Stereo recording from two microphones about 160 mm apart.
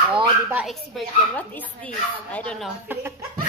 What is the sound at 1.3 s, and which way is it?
A woman's voice, 10° left (ahead or behind).